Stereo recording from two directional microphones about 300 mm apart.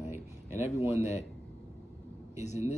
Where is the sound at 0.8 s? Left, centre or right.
Left.